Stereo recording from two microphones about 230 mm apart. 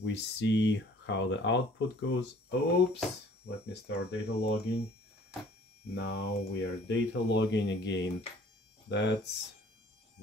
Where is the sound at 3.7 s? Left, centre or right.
Left.